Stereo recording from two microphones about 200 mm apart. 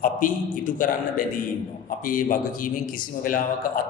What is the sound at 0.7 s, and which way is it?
A man's voice, 40° left (ahead or behind).